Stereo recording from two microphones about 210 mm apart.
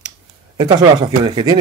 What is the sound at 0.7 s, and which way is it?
Speech, 20° right (ahead or behind).